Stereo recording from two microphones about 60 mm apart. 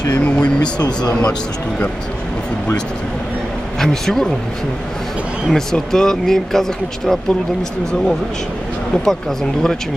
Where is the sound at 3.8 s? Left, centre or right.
Centre.